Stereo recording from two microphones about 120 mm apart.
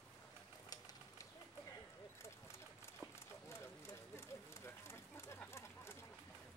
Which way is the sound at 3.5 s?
20° left (ahead or behind).